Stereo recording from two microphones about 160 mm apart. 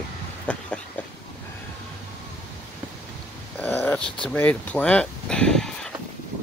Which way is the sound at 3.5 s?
10° left (ahead or behind).